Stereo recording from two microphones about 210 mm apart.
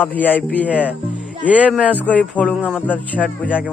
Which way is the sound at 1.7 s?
5° right (ahead or behind).